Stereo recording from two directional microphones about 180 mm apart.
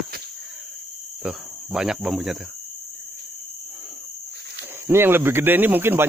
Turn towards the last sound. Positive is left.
turn(degrees=-10)  # may be behind; listen again after turning